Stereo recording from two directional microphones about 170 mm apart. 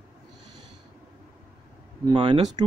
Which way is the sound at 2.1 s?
30° right (ahead or behind).